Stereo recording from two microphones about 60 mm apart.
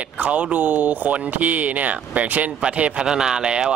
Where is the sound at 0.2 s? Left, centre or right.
Right.